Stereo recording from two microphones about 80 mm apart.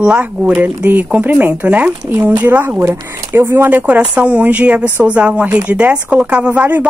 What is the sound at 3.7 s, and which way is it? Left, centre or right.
A woman's voice, centre.